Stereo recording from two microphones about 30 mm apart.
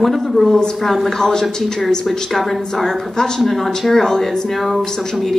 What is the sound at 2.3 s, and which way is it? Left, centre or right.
Speech, centre.